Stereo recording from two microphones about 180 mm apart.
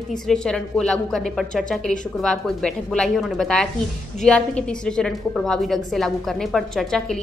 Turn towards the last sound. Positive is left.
turn(degrees=5)  # may be behind; listen again after turning